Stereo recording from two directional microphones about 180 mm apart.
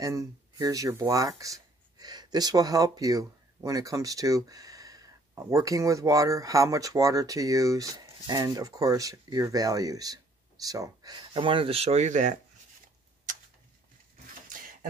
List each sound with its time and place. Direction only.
0.0 s speech: 20° right (ahead or behind); by 12.4 s 45° right (ahead or behind)